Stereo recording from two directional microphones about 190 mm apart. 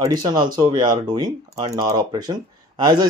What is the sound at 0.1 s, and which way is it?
Speech, 20° right (ahead or behind).